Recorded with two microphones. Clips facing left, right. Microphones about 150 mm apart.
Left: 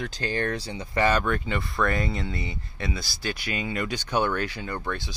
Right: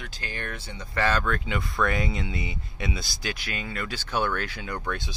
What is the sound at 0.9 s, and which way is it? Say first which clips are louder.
Speech: left 2 dB; 15° left (ahead or behind).